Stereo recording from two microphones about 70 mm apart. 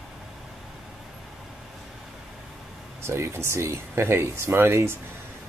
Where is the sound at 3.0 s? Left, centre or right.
Right.